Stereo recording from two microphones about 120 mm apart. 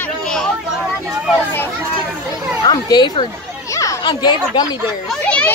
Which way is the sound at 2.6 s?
35° left (ahead or behind).